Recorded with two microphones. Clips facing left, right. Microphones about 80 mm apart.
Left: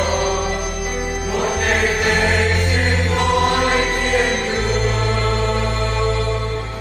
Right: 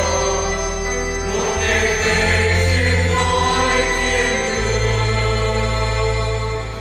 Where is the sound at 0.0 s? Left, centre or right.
Centre.